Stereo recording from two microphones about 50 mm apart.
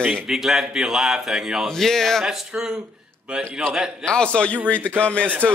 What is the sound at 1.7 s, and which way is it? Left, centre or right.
Speech, centre.